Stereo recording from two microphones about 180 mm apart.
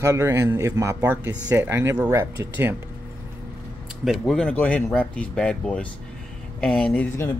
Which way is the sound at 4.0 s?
Centre (ahead or behind).